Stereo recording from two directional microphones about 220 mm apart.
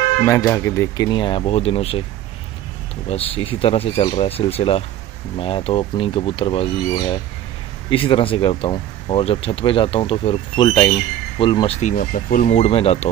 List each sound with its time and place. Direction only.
0.2 s speech: 15° left (ahead or behind)
3.1 s speech: 25° left (ahead or behind)